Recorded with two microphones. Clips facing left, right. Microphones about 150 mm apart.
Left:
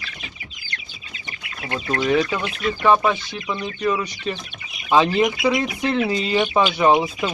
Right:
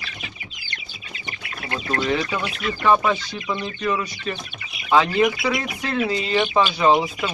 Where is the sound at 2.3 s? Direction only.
Centre (ahead or behind).